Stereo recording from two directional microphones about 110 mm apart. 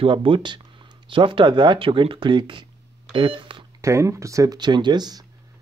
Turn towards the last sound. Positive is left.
turn(degrees=-40)  # may be behind; listen again after turning